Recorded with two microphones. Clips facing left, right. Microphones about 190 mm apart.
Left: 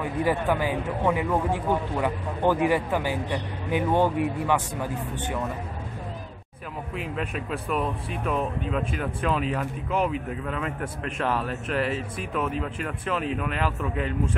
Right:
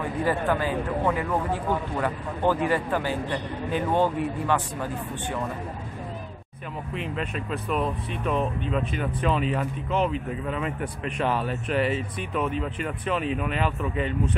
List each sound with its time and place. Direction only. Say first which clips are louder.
0.2 s speech: left 1 dB; 15° left (ahead or behind)
7.0 s a man's voice: even; 5° left (ahead or behind)